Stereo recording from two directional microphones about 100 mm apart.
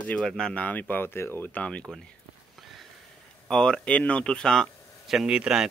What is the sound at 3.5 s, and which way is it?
Speech, 5° left (ahead or behind).